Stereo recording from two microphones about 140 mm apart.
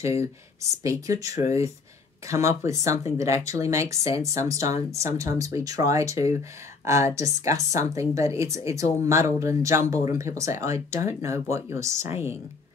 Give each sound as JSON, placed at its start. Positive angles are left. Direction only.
{"t": 0.0, "sound": "speech", "side_deg": -20}